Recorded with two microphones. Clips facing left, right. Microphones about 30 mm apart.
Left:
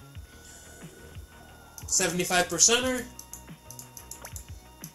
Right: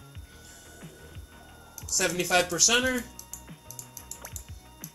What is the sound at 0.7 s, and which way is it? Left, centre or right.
Music, centre.